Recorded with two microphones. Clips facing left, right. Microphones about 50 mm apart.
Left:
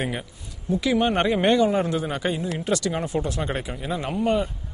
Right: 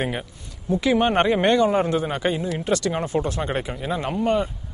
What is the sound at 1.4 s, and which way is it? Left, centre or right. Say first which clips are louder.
Speech: left 1 dB; centre.